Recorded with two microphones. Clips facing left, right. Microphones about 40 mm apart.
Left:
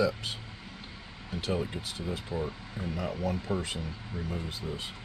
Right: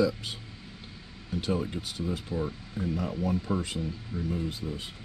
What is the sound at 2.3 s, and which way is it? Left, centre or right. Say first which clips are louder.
Speech: right 2 dB; left.